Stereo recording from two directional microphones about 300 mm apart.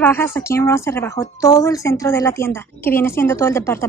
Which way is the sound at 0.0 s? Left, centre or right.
Centre.